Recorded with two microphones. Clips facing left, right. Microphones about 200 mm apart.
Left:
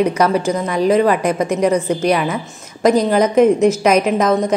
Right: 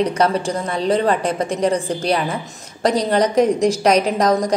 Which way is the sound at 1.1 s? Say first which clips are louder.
Left 3 dB; 10° left (ahead or behind).